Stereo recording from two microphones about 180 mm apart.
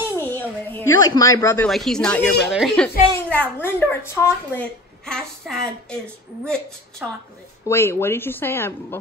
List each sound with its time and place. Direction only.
0.3 s a woman's voice: 10° left (ahead or behind)
1.7 s a woman's voice: centre (ahead or behind)
5.0 s a woman's voice: centre (ahead or behind)
7.6 s a woman's voice: 15° left (ahead or behind)